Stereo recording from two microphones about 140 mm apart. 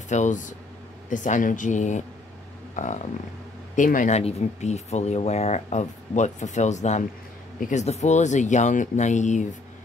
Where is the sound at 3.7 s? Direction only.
65° left (ahead or behind).